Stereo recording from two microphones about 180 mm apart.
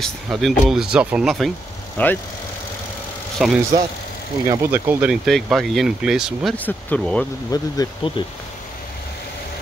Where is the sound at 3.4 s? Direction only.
Centre (ahead or behind).